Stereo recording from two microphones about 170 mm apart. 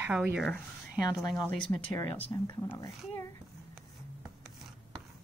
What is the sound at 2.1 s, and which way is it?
Speech, 30° left (ahead or behind).